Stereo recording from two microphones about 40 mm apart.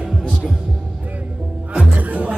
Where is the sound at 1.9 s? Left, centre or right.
Right.